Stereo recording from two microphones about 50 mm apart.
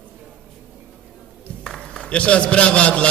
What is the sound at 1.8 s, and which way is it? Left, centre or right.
A man's voice, centre.